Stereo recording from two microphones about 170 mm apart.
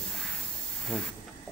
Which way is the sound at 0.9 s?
5° left (ahead or behind).